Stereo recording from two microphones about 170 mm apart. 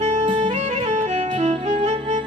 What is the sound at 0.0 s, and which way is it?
Saxophone, 40° right (ahead or behind).